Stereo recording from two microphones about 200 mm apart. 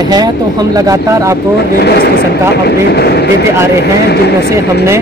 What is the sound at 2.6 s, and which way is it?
Speech, 55° left (ahead or behind).